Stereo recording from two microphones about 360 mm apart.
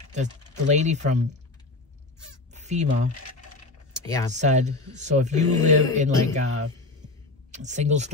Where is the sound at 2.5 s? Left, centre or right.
Centre.